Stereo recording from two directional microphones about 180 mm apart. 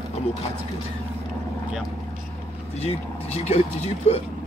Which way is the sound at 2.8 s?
35° left (ahead or behind).